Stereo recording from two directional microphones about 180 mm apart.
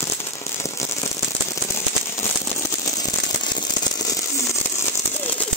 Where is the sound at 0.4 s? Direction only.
15° left (ahead or behind).